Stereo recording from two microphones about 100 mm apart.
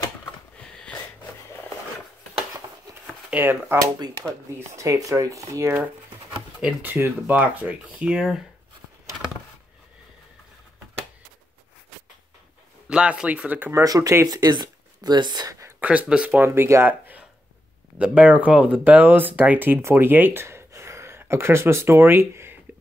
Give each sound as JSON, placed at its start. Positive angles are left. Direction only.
{"t": 0.7, "sound": "wheeze", "side_deg": 10}
{"t": 3.3, "sound": "speech", "side_deg": -20}
{"t": 4.6, "sound": "speech", "side_deg": -30}
{"t": 12.8, "sound": "speech", "side_deg": -10}
{"t": 13.8, "sound": "speech", "side_deg": -35}
{"t": 15.8, "sound": "speech", "side_deg": -15}